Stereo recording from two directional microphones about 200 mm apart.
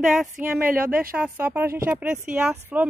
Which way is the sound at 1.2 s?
10° right (ahead or behind).